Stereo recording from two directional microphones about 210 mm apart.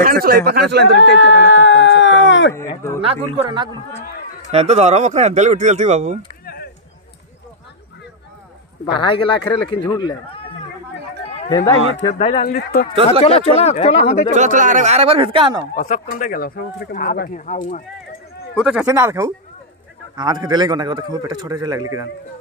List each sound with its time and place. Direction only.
0.0 s speech: 45° right (ahead or behind)
0.9 s a sound: 60° left (ahead or behind)
2.5 s speech: 15° left (ahead or behind)
3.3 s a man's voice: 25° right (ahead or behind)
6.4 s a sound: 45° left (ahead or behind)
8.8 s speech: 25° left (ahead or behind)
11.3 s a sound: 25° left (ahead or behind)
12.0 s speech: 30° left (ahead or behind)
12.4 s speech: 45° left (ahead or behind)
13.2 s speech: 30° left (ahead or behind)
14.3 s a man's voice: 35° right (ahead or behind)
15.8 s speech: 40° left (ahead or behind)
18.5 s a man's voice: centre (ahead or behind); by 22.0 s 20° right (ahead or behind)